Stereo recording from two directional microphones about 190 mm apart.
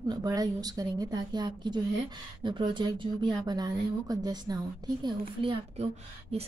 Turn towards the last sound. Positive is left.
turn(degrees=-35)  # may be behind; listen again after turning